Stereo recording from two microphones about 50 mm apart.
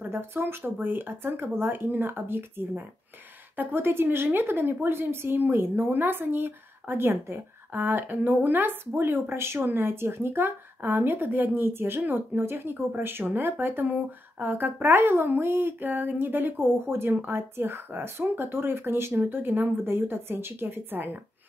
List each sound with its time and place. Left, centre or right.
0.0 s a woman's voice: right
19.2 s a woman's voice: right